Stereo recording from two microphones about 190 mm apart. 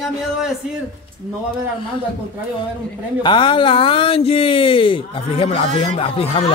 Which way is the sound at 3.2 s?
25° left (ahead or behind).